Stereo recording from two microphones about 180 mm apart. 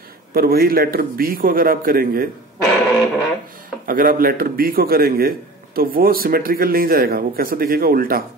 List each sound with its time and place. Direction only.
0.3 s speech: 60° right (ahead or behind)
2.6 s music: centre (ahead or behind)
3.8 s speech: 50° right (ahead or behind)